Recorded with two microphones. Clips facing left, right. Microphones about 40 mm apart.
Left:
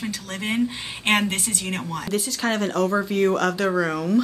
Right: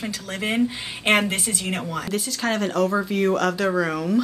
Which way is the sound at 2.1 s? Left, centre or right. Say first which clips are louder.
Left 1 dB; centre.